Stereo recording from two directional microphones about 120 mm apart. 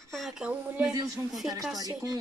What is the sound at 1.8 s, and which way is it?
Speech, 30° right (ahead or behind).